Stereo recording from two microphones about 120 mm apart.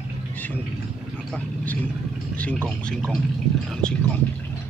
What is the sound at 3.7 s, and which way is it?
Vehicle, 5° left (ahead or behind).